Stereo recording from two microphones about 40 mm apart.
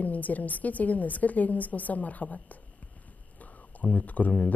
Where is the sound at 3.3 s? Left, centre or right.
Left.